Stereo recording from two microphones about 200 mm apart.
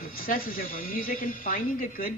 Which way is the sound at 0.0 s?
45° left (ahead or behind).